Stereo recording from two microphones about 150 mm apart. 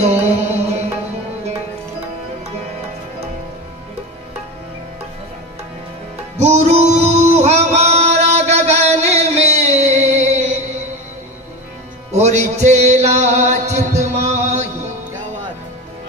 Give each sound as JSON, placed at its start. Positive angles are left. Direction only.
{"t": 0.0, "sound": "music", "side_deg": -45}
{"t": 6.3, "sound": "music", "side_deg": -45}
{"t": 12.1, "sound": "music", "side_deg": -50}